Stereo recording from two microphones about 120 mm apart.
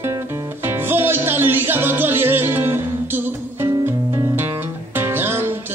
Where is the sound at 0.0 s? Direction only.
20° right (ahead or behind).